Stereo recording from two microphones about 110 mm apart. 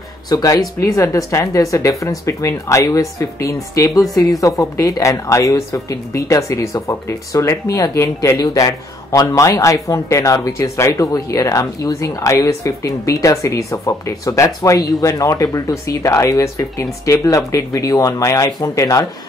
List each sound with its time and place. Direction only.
0.3 s a woman's voice: 30° left (ahead or behind)